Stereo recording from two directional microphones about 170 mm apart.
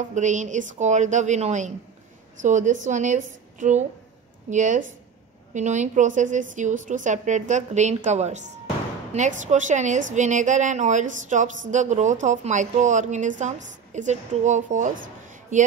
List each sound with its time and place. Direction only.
0.1 s a woman's voice: 45° right (ahead or behind)